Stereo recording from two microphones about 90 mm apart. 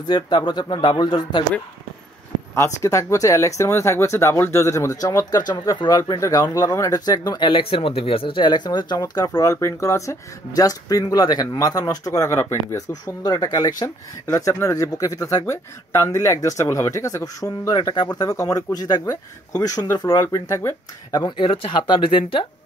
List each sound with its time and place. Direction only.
0.1 s speech: 55° left (ahead or behind)
2.5 s speech: 30° left (ahead or behind); by 7.4 s 45° left (ahead or behind)
7.4 s speech: 80° left; by 13.9 s 40° left (ahead or behind)
14.2 s speech: 30° left (ahead or behind)
21.4 s speech: 70° left (ahead or behind)